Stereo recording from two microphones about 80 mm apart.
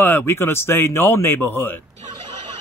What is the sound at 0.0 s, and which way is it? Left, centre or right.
Speech, left.